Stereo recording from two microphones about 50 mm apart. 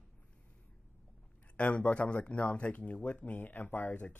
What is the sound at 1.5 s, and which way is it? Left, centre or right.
Speech, left.